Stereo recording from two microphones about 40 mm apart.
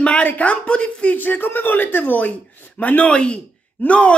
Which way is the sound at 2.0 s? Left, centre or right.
Left.